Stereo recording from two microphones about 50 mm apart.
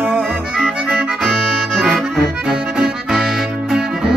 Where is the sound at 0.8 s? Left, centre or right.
Centre.